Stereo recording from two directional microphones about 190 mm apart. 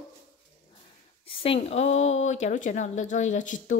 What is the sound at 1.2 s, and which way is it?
A woman's voice, 30° left (ahead or behind).